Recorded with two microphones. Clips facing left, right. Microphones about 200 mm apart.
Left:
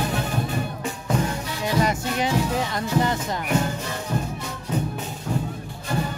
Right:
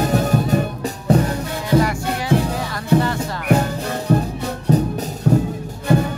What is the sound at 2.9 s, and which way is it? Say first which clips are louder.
Music: right 7 dB; 60° right (ahead or behind).